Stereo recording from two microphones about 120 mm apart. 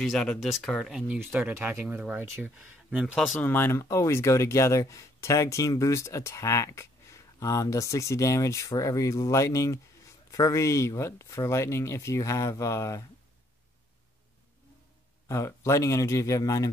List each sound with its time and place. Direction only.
0.0 s speech: centre (ahead or behind)
3.3 s speech: 20° left (ahead or behind)
15.2 s speech: 25° left (ahead or behind)